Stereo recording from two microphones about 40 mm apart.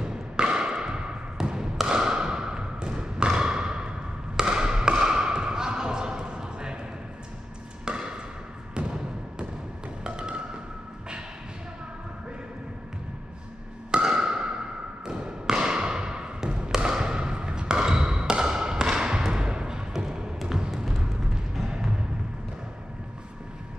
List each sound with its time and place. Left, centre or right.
0.0 s a sound: right
7.8 s chop: right
8.7 s thump: right
10.0 s music: right
13.9 s a sound: right
15.0 s thump: centre
20.0 s music: centre